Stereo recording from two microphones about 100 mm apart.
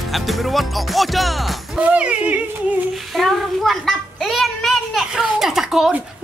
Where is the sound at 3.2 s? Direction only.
Centre (ahead or behind).